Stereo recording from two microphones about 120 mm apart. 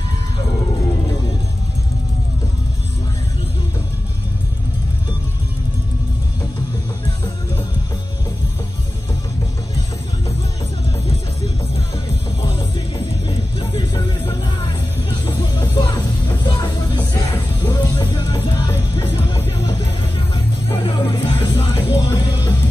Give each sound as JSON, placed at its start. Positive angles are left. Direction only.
{"t": 12.4, "sound": "music", "side_deg": 40}
{"t": 20.7, "sound": "music", "side_deg": 40}